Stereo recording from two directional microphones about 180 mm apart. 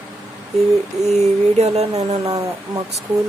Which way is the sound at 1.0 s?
40° right (ahead or behind).